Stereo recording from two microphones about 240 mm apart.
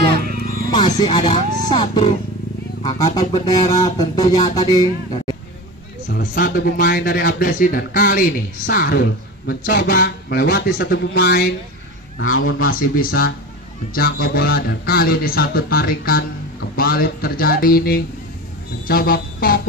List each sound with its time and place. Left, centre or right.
0.7 s speech: centre
2.8 s a sound: centre
6.3 s speech: left
12.2 s speech: left
12.5 s speech: left